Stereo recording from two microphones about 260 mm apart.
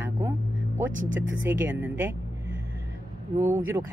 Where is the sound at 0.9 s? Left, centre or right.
Right.